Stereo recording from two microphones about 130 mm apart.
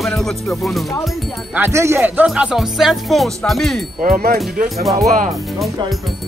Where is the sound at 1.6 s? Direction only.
20° right (ahead or behind); by 3.8 s centre (ahead or behind).